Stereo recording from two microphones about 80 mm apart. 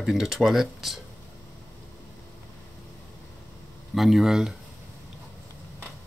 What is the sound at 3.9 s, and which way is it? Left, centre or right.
Speech, centre.